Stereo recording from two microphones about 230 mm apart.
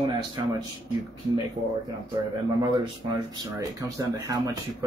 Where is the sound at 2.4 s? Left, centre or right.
Centre.